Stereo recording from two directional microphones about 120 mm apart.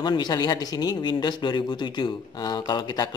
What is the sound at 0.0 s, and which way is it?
Speech, 35° left (ahead or behind).